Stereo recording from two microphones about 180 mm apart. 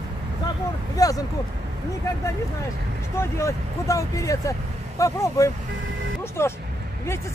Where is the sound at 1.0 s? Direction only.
20° left (ahead or behind).